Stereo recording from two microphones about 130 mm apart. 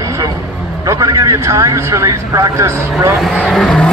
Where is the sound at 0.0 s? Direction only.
25° right (ahead or behind).